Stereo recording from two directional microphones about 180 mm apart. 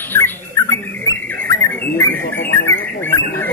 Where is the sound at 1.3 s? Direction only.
15° left (ahead or behind).